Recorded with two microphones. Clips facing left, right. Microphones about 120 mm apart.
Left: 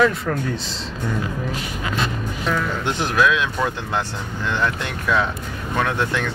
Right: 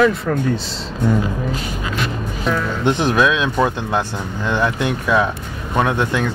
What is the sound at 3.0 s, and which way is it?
Speech, 20° right (ahead or behind).